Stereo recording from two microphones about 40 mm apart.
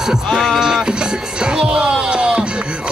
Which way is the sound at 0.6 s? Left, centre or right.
Centre.